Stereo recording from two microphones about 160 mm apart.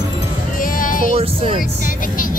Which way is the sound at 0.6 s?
60° left (ahead or behind).